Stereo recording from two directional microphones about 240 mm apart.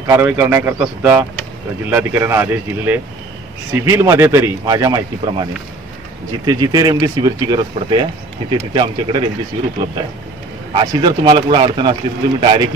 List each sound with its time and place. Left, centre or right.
0.0 s speech: centre
6.4 s speech: centre
10.7 s speech: right